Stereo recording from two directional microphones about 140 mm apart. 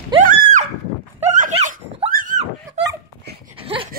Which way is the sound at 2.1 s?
70° right (ahead or behind).